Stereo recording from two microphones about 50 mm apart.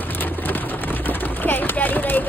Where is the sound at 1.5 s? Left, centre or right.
Left.